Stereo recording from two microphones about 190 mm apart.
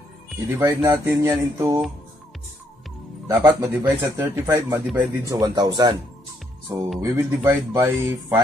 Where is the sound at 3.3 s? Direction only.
15° right (ahead or behind).